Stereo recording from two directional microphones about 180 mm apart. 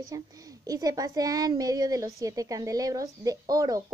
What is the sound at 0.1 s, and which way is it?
A woman's voice, 20° right (ahead or behind).